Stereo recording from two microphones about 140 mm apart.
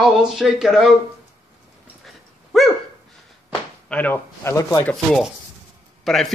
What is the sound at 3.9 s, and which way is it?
Speech, 10° left (ahead or behind).